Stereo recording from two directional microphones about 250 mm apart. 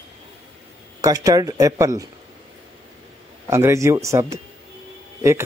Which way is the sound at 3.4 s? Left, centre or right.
Centre.